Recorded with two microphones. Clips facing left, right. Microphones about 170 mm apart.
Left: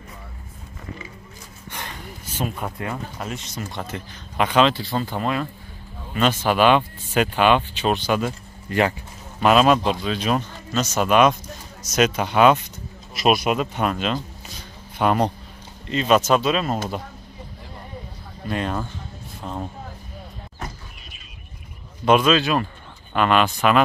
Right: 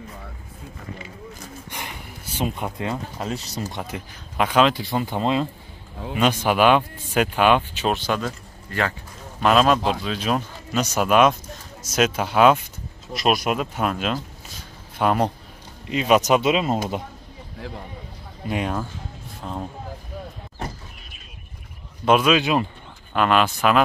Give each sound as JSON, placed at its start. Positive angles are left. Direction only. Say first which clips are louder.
{"t": 1.7, "sound": "a sound", "louder": "left 4 dB", "side_deg": -10}
{"t": 2.9, "sound": "speech", "louder": "right 2 dB", "side_deg": -30}
{"t": 3.7, "sound": "speech", "louder": "even", "side_deg": -15}
{"t": 4.8, "sound": "speech", "louder": "right 1 dB", "side_deg": -20}
{"t": 6.1, "sound": "speech", "louder": "even", "side_deg": -10}
{"t": 8.3, "sound": "a sound", "louder": "left 3 dB", "side_deg": 20}
{"t": 9.4, "sound": "speech", "louder": "left 2 dB", "side_deg": 5}
{"t": 10.8, "sound": "speech", "louder": "even", "side_deg": -10}
{"t": 11.1, "sound": "speech", "louder": "even", "side_deg": 0}
{"t": 19.4, "sound": "speech", "louder": "even", "side_deg": 0}
{"t": 22.0, "sound": "speech", "louder": "left 1 dB", "side_deg": -5}
{"t": 23.1, "sound": "speech", "louder": "even", "side_deg": 0}